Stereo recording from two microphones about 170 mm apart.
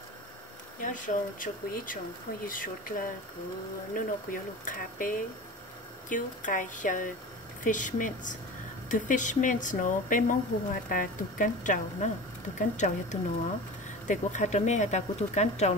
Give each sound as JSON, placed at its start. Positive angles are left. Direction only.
{"t": 0.7, "sound": "speech", "side_deg": 50}